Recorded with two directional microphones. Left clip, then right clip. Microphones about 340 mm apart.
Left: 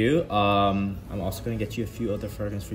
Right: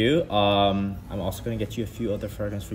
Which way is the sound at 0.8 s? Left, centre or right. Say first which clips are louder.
Right 1 dB; centre.